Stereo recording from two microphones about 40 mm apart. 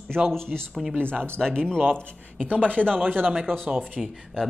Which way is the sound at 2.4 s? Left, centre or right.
Left.